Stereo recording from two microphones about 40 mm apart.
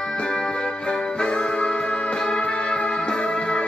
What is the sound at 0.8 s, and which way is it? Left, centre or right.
Music, left.